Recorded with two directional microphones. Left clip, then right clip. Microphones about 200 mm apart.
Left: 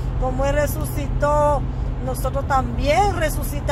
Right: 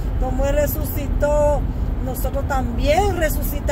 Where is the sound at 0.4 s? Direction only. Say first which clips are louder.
Right 1 dB; 5° right (ahead or behind).